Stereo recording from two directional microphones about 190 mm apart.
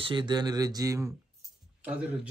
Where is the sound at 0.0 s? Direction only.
25° right (ahead or behind).